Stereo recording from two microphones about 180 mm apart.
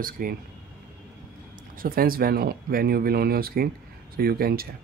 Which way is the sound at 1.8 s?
55° right (ahead or behind).